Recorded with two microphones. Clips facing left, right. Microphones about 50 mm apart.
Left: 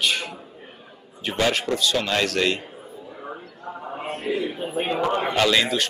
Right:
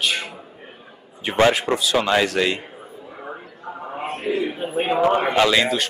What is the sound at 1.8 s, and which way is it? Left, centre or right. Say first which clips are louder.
Speech: right 4 dB; centre.